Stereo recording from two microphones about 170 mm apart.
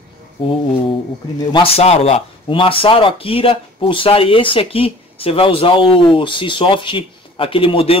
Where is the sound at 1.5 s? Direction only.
35° left (ahead or behind).